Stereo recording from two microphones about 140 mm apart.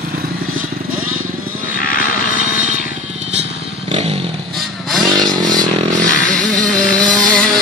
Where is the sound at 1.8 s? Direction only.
90° left.